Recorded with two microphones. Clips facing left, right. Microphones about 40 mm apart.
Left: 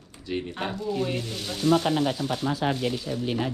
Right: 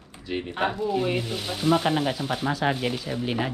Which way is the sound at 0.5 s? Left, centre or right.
Right.